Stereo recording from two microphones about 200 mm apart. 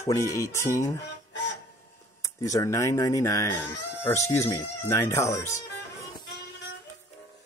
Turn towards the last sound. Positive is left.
turn(degrees=15)  # may be behind; listen again after turning